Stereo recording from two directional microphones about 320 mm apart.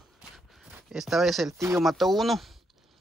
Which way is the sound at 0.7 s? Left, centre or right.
Centre.